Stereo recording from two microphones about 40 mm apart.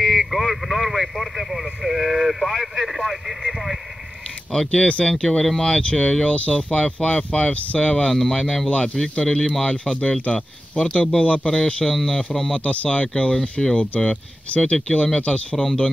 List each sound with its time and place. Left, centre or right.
0.2 s speech: centre
4.6 s speech: left
5.2 s speech: centre
8.1 s speech: centre
8.6 s speech: left
11.4 s speech: centre
12.5 s speech: left
13.7 s speech: left
15.5 s speech: centre